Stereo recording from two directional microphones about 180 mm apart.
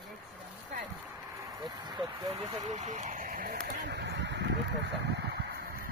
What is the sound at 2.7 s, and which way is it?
Speech, 40° right (ahead or behind).